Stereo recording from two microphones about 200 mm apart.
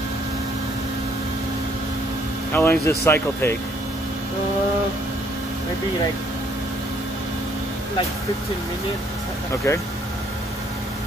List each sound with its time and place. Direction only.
2.5 s speech: 10° left (ahead or behind)
9.6 s speech: 15° left (ahead or behind)